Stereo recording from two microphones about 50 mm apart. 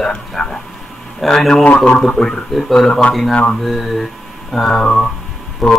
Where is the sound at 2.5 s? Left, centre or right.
Centre.